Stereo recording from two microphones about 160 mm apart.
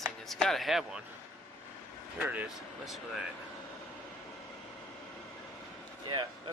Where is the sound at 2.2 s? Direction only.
10° right (ahead or behind).